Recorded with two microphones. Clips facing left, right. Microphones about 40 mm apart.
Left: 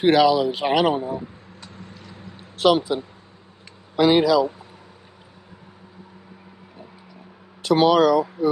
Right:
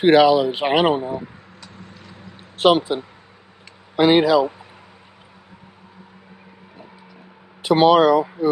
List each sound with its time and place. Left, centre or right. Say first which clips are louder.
0.0 s speech: right 3 dB; right
2.5 s speech: right 2 dB; right
7.6 s speech: right 3 dB; right